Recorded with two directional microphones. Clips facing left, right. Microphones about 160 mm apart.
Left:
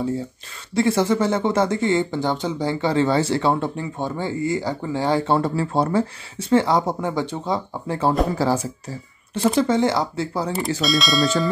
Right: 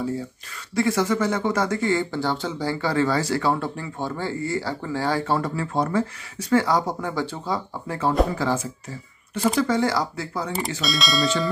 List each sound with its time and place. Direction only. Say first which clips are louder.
0.7 s speech: left 3 dB; 30° left (ahead or behind)
9.3 s speech: left 3 dB; 25° left (ahead or behind)
10.8 s speech: left 4 dB; centre (ahead or behind)